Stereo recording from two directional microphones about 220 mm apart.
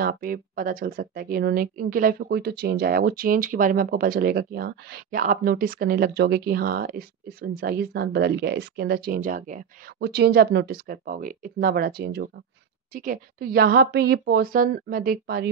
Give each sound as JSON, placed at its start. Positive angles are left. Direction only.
{"t": 0.0, "sound": "speech", "side_deg": -40}